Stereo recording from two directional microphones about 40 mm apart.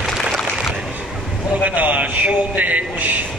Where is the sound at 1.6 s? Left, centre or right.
Right.